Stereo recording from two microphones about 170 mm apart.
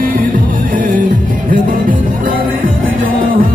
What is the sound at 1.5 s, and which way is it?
Music, 55° right (ahead or behind).